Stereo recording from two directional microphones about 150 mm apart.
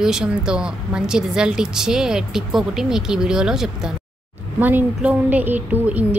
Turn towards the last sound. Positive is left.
turn(degrees=-10)  # may be behind; listen again after turning